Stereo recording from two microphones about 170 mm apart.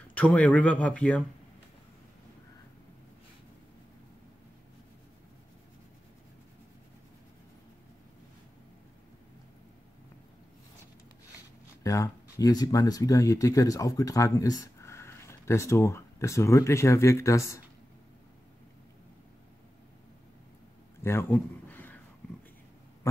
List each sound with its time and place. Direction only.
0.1 s speech: 10° left (ahead or behind)
11.8 s speech: 20° left (ahead or behind)
21.0 s a sound: 15° left (ahead or behind)